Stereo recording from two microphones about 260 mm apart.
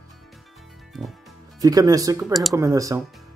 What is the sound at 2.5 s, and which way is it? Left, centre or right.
Speech, centre.